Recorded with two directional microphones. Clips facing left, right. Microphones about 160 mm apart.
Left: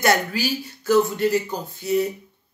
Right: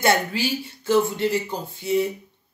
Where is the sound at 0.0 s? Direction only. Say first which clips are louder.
Even; 25° right (ahead or behind).